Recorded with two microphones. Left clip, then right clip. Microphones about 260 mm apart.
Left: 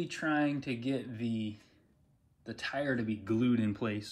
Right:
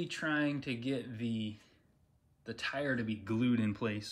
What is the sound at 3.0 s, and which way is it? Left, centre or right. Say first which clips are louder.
Speech: left 2 dB; centre.